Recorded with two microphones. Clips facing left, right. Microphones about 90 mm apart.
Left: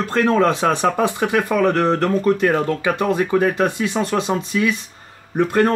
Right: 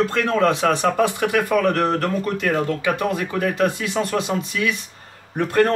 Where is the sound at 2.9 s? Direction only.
30° left (ahead or behind).